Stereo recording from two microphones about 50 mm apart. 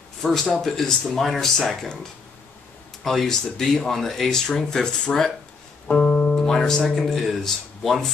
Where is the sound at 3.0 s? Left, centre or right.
Centre.